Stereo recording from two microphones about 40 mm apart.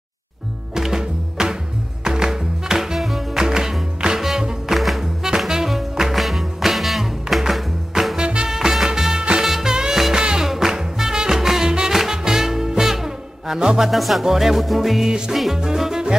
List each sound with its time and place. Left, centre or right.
0.7 s music: centre
3.3 s music: centre
4.7 s music: centre
5.0 s music: centre
7.9 s swing music: centre
8.2 s music: right
13.8 s music: centre